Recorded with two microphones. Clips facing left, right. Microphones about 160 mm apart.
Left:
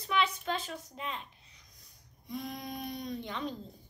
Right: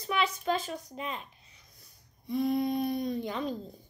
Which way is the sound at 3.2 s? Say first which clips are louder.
Right 4 dB; 40° right (ahead or behind).